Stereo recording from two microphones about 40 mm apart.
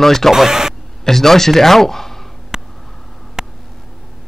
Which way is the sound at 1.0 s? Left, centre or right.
Centre.